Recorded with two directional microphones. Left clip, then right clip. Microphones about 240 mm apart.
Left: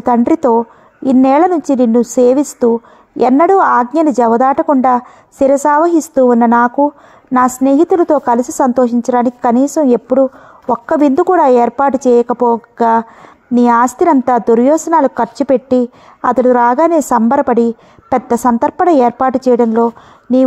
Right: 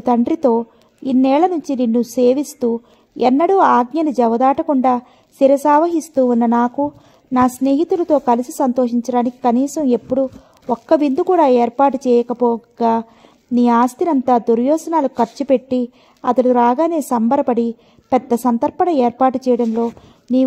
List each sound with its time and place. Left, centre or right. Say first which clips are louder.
0.0 s a woman's voice: left 4 dB; left